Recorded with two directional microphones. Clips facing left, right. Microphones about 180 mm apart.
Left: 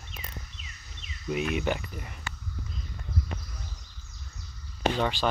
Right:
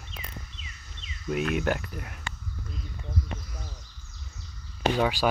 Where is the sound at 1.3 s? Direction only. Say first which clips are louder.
Right 2 dB; centre (ahead or behind).